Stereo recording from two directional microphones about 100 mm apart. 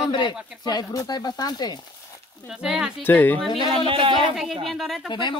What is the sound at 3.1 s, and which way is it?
Speech, 15° left (ahead or behind).